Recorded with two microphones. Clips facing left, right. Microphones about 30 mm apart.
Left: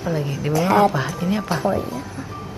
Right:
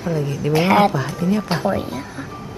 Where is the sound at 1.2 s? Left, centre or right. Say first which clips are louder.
Right 4 dB; left.